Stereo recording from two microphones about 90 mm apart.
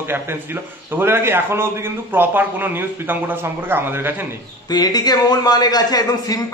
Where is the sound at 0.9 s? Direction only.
25° right (ahead or behind).